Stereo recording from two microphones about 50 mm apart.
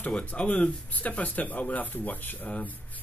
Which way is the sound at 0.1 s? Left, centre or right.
Left.